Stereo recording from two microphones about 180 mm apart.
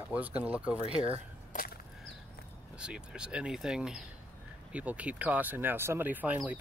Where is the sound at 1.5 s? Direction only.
55° left (ahead or behind).